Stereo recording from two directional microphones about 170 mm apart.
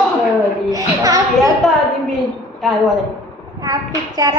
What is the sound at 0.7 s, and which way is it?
Music, 20° right (ahead or behind).